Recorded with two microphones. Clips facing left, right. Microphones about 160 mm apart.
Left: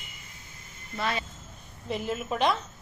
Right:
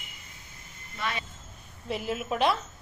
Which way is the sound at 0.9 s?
35° left (ahead or behind).